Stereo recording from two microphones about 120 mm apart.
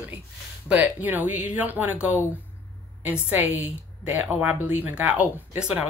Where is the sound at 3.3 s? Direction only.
15° right (ahead or behind).